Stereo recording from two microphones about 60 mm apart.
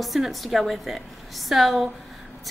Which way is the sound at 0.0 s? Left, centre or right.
Centre.